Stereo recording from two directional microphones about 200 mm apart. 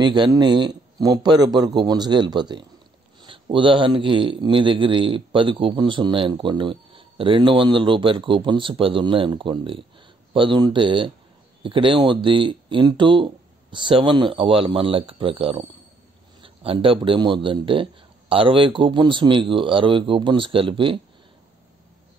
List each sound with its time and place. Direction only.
0.0 s speech: 20° right (ahead or behind)